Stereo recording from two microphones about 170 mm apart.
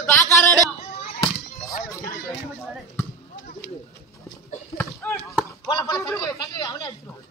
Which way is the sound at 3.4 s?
65° left (ahead or behind).